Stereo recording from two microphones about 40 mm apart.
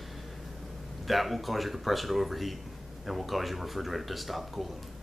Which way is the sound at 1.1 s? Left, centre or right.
Centre.